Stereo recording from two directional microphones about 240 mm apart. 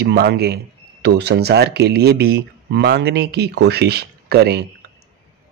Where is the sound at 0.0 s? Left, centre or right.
Right.